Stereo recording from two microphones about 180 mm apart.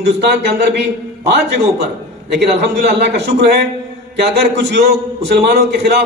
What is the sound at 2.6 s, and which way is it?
A man's voice, 75° right (ahead or behind).